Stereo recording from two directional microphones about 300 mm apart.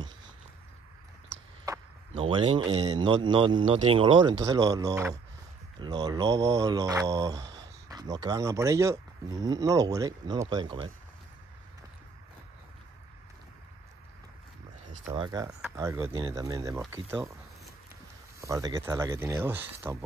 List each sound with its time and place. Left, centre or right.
1.7 s a sound: centre
2.7 s speech: centre
14.9 s speech: centre
18.4 s speech: centre